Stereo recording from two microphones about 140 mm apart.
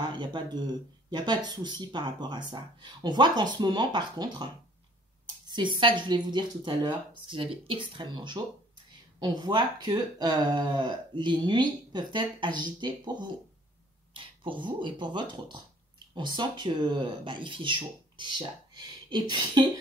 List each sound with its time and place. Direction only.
0.0 s speech: 35° right (ahead or behind)
5.5 s speech: 35° right (ahead or behind)